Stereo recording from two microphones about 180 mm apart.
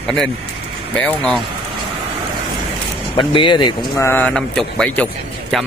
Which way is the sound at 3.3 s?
25° left (ahead or behind).